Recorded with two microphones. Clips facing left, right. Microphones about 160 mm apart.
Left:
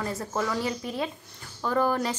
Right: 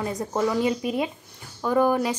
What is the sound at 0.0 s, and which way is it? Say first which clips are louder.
A woman's voice: right 5 dB; 15° right (ahead or behind).